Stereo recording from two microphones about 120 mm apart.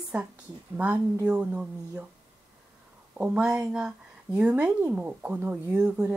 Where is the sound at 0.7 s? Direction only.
15° right (ahead or behind).